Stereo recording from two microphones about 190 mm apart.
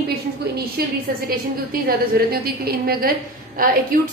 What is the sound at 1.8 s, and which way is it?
A woman's voice, 55° right (ahead or behind).